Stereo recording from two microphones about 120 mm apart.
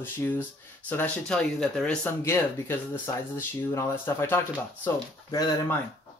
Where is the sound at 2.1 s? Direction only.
20° left (ahead or behind).